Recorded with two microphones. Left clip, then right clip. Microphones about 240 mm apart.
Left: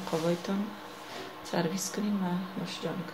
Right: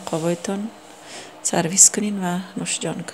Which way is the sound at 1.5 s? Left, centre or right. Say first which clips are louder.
Right 14 dB; right.